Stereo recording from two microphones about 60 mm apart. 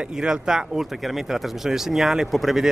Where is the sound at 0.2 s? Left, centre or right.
Centre.